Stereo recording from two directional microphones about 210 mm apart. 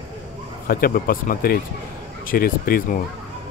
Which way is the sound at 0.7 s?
45° left (ahead or behind).